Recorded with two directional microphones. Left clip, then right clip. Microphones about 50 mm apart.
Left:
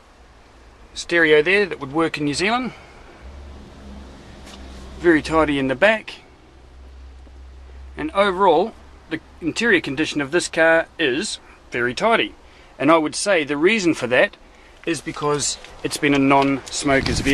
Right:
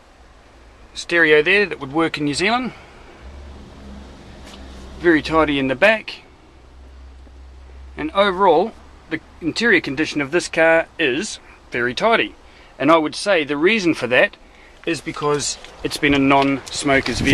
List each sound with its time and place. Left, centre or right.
0.9 s speech: left
1.6 s speech: centre
5.3 s speech: centre
7.9 s speech: centre
12.1 s a sound: centre
12.8 s speech: left
14.0 s a sound: centre
15.1 s speech: left
15.4 s speech: centre
15.9 s speech: centre